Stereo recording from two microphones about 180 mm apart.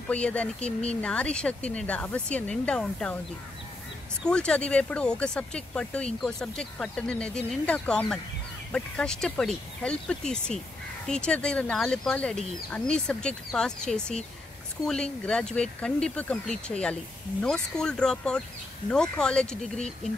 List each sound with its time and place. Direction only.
0.1 s speech: 5° left (ahead or behind)
4.3 s speech: 5° left (ahead or behind)
15.2 s speech: 5° left (ahead or behind)